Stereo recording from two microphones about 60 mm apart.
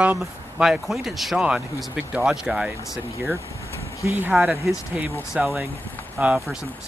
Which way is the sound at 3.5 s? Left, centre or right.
Left.